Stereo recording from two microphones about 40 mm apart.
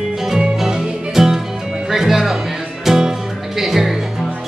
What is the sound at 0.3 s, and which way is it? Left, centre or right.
Music, centre.